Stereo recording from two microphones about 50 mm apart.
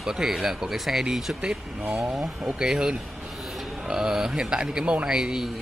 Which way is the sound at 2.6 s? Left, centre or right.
Centre.